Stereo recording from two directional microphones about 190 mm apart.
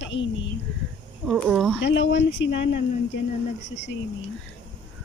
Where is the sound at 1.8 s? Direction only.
65° left (ahead or behind).